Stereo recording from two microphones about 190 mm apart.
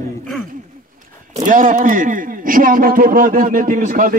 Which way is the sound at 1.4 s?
45° right (ahead or behind).